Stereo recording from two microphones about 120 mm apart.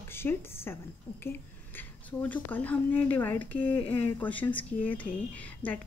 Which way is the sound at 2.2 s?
15° left (ahead or behind).